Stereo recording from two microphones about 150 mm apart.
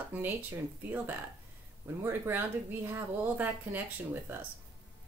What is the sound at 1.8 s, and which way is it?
Speech, 15° right (ahead or behind).